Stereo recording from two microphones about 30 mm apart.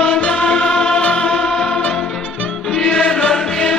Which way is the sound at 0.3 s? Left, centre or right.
Left.